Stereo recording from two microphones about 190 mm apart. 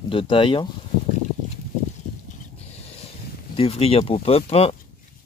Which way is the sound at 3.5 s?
30° left (ahead or behind).